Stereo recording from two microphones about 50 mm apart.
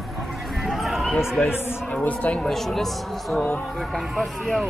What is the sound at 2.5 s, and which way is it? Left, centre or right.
Speech, centre.